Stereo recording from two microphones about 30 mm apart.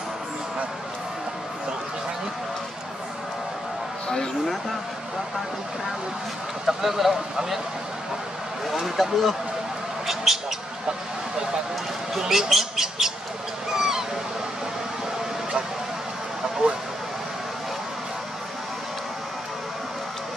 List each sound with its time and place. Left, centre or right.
6.6 s speech: centre
8.6 s speech: centre
12.2 s speech: centre
13.7 s honk: centre